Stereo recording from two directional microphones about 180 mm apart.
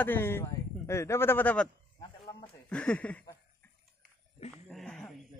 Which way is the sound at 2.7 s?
5° left (ahead or behind).